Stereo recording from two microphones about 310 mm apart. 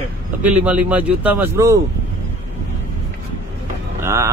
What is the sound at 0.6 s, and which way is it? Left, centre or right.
Speech, centre.